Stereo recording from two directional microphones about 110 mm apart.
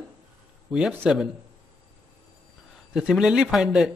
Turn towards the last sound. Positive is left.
turn(degrees=-5)  # may be behind; listen again after turning